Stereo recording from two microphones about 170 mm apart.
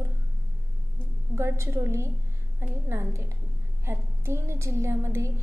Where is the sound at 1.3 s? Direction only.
15° right (ahead or behind).